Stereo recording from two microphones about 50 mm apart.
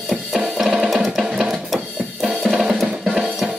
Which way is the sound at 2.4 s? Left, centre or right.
Centre.